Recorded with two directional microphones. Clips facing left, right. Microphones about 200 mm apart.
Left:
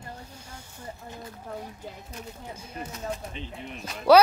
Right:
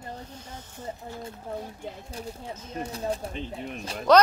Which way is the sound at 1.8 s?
30° right (ahead or behind).